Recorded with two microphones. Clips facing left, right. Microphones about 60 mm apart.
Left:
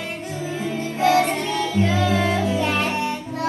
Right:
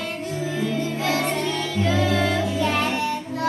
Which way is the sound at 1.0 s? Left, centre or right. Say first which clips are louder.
Left 9 dB; left.